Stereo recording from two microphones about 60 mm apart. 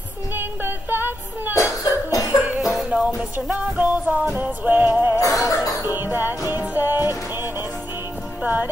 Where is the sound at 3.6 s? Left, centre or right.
Right.